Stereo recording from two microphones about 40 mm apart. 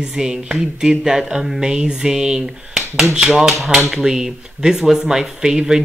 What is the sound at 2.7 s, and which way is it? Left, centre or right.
Finger snapping, centre.